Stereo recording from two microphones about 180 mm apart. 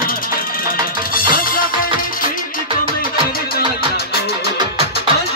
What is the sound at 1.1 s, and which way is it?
Music, 50° left (ahead or behind).